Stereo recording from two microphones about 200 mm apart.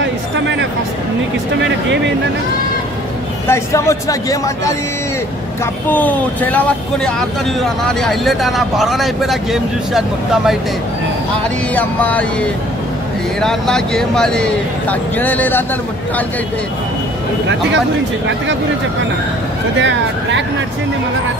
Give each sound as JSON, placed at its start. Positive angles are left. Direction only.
{"t": 3.4, "sound": "speech", "side_deg": 15}
{"t": 5.9, "sound": "speech", "side_deg": 10}
{"t": 11.7, "sound": "speech", "side_deg": 10}
{"t": 19.8, "sound": "speech", "side_deg": -65}